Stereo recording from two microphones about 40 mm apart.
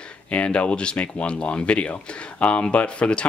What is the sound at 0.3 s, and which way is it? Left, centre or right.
Speech, left.